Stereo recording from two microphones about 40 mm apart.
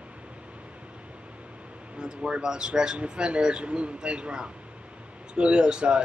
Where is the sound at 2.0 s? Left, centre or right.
Right.